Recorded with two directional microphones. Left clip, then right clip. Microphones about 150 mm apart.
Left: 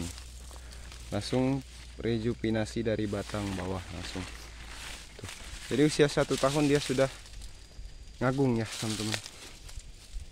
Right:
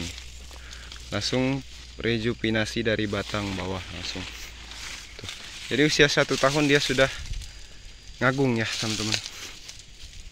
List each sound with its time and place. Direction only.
1.1 s speech: 5° left (ahead or behind)
5.7 s speech: 15° left (ahead or behind)
6.2 s speech: 5° right (ahead or behind)
8.2 s speech: centre (ahead or behind)
8.6 s speech: 20° right (ahead or behind)